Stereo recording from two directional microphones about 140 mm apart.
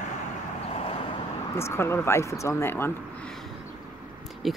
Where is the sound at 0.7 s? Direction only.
45° left (ahead or behind).